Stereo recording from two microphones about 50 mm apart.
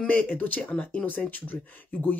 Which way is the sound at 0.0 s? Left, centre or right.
Left.